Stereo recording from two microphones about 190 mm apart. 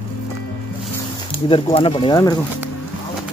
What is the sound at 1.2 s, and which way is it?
Speech, 25° left (ahead or behind).